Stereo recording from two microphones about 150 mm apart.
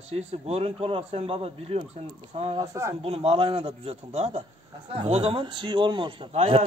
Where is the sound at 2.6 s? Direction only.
20° right (ahead or behind).